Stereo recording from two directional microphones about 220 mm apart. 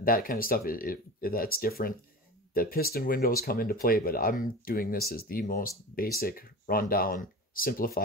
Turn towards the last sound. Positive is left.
turn(degrees=40)  # may be behind; listen again after turning